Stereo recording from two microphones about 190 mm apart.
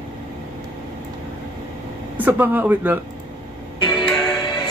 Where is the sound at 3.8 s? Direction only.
20° left (ahead or behind).